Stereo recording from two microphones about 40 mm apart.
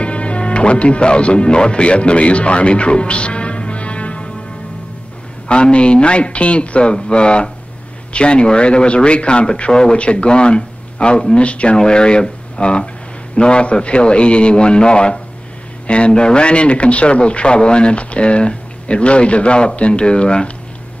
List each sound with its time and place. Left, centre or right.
0.0 s speech: left
5.5 s a man's voice: left